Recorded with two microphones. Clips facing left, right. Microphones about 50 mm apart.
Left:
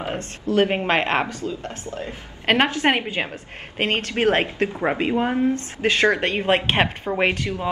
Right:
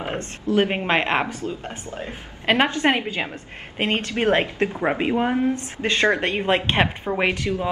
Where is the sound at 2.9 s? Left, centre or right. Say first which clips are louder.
Left 1 dB; left.